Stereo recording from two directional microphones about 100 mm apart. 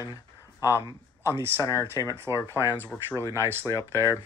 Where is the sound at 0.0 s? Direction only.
35° left (ahead or behind).